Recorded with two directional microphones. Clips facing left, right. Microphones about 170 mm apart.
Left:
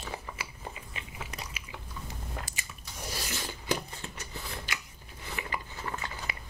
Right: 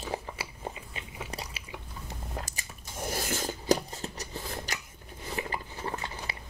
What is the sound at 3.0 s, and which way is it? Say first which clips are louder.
Scissors: right 6 dB; 50° right (ahead or behind).